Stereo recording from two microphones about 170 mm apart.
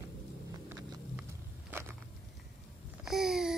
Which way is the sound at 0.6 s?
10° right (ahead or behind).